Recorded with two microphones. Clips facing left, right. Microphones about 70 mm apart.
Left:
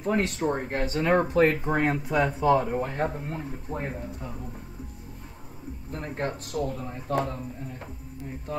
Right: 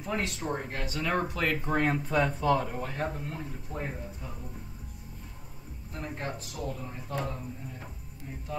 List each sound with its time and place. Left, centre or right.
0.0 s speech: left
1.6 s speech: centre
2.8 s speech: left
5.9 s speech: left